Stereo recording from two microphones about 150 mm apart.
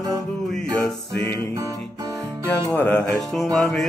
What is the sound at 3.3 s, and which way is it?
Music, centre (ahead or behind).